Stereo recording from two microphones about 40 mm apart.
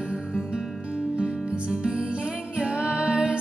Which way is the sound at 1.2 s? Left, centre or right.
Right.